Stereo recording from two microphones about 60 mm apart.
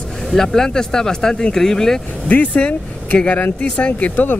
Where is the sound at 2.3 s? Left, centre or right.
Left.